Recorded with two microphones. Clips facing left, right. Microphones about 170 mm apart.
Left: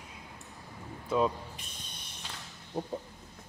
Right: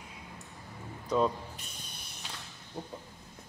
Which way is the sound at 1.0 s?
5° left (ahead or behind).